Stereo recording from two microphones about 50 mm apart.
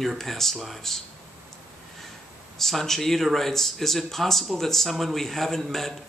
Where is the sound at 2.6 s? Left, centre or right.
Centre.